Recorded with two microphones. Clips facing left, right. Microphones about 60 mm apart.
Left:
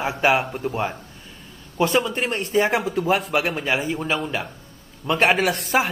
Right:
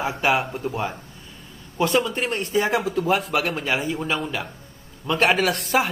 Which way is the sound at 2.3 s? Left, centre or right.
Left.